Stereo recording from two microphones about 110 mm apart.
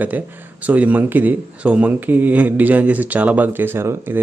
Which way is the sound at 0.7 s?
15° right (ahead or behind).